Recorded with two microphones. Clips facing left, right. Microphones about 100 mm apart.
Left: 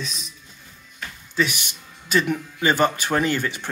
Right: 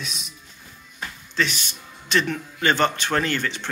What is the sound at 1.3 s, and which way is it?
Music, 10° left (ahead or behind).